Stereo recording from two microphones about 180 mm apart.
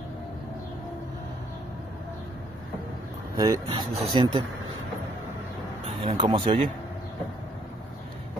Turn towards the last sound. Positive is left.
turn(degrees=-30)  # may be behind; listen again after turning